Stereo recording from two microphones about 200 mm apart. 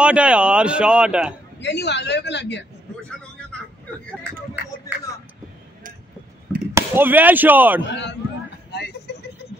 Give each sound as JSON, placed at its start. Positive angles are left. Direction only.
{"t": 0.0, "sound": "speech", "side_deg": -5}
{"t": 1.6, "sound": "a man's voice", "side_deg": 60}
{"t": 4.9, "sound": "a sound", "side_deg": -10}
{"t": 6.7, "sound": "speech", "side_deg": -10}
{"t": 7.8, "sound": "a man's voice", "side_deg": 60}
{"t": 8.7, "sound": "vehicle", "side_deg": 55}